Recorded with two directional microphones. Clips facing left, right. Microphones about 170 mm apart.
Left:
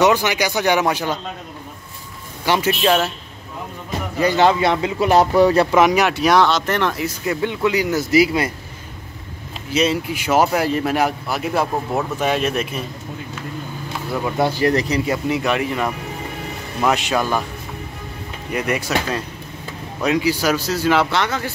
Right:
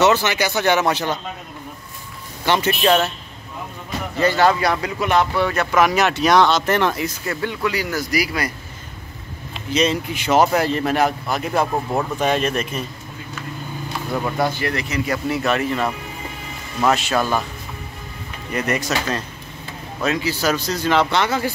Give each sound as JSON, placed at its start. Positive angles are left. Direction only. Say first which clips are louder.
{"t": 0.0, "sound": "speech", "louder": "left 1 dB", "side_deg": 15}
{"t": 2.4, "sound": "speech", "louder": "even", "side_deg": 10}
{"t": 4.2, "sound": "a man's voice", "louder": "left 1 dB", "side_deg": 20}
{"t": 5.8, "sound": "speech", "louder": "left 2 dB", "side_deg": 15}
{"t": 7.2, "sound": "a man's voice", "louder": "left 5 dB", "side_deg": 20}
{"t": 9.7, "sound": "speech", "louder": "left 1 dB", "side_deg": 5}
{"t": 14.4, "sound": "speech", "louder": "left 9 dB", "side_deg": 35}
{"t": 15.0, "sound": "speech", "louder": "left 1 dB", "side_deg": 15}
{"t": 18.5, "sound": "speech", "louder": "left 1 dB", "side_deg": 10}
{"t": 21.2, "sound": "speech", "louder": "right 2 dB", "side_deg": -10}